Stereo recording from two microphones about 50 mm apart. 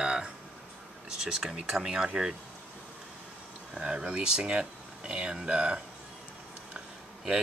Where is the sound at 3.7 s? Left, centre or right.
Right.